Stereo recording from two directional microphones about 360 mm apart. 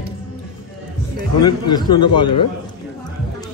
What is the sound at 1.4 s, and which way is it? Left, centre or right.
Speech, centre.